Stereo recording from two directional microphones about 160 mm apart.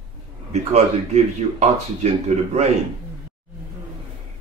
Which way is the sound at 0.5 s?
45° right (ahead or behind).